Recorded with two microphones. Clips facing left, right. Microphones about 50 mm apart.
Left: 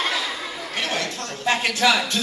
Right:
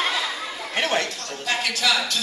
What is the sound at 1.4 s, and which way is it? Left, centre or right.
Speech, left.